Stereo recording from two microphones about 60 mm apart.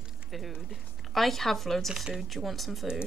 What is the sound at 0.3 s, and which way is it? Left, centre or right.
Speech, centre.